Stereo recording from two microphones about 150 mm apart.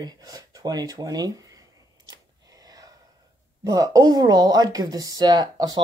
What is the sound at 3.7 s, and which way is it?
Speech, 25° right (ahead or behind).